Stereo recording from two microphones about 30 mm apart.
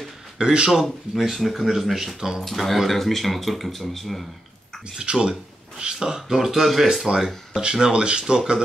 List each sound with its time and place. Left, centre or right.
0.4 s speech: right
0.7 s speech: centre
2.1 s speech: right
2.4 s speech: centre
4.9 s speech: right
7.7 s speech: right